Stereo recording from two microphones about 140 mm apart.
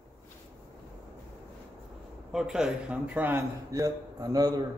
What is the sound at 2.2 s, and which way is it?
A man's voice, 5° right (ahead or behind).